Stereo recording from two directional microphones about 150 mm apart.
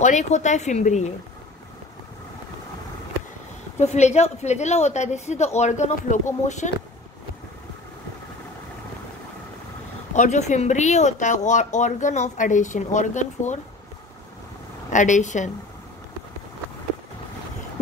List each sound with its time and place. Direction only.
0.0 s speech: 50° left (ahead or behind)
3.7 s speech: 50° left (ahead or behind)
10.1 s speech: 55° left (ahead or behind)
14.9 s speech: 55° left (ahead or behind)